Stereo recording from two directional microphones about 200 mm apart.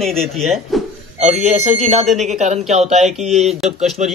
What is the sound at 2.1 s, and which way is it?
Speech, centre (ahead or behind).